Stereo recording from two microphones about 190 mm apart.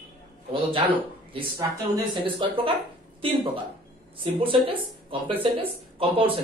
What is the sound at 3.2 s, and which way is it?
Speech, 30° right (ahead or behind).